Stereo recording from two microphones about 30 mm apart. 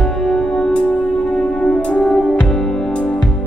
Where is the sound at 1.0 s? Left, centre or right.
Left.